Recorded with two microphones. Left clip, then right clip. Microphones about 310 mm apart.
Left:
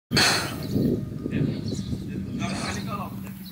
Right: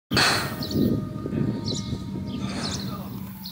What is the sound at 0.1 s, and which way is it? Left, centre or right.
Sigh, centre.